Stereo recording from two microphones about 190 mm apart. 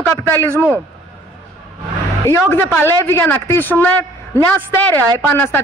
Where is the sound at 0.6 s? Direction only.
5° right (ahead or behind).